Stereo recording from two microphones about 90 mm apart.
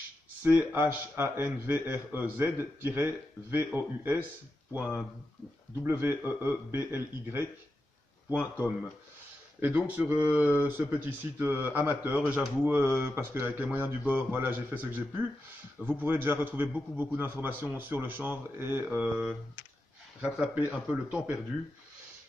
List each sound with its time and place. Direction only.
0.6 s a man's voice: 20° right (ahead or behind)
9.8 s a man's voice: 15° right (ahead or behind)
20.2 s speech: 10° right (ahead or behind)